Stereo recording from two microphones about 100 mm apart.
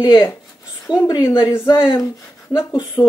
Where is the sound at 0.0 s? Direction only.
40° left (ahead or behind).